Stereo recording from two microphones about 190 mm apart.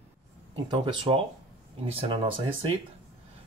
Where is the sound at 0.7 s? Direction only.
25° right (ahead or behind).